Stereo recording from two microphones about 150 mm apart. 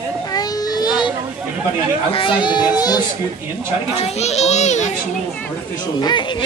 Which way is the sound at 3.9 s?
45° left (ahead or behind).